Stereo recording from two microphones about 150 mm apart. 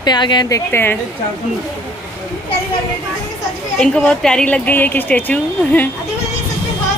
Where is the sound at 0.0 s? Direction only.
30° left (ahead or behind).